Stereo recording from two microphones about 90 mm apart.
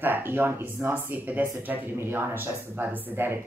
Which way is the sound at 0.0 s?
20° right (ahead or behind).